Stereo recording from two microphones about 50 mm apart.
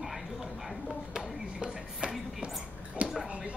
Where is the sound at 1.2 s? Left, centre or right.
Centre.